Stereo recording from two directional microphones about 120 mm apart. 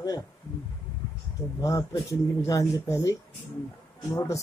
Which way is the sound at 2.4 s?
25° left (ahead or behind).